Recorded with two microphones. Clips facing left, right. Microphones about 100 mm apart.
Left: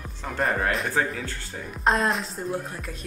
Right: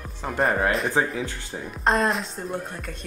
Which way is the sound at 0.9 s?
15° right (ahead or behind).